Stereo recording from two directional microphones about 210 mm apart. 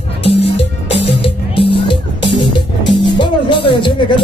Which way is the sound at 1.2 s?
25° left (ahead or behind).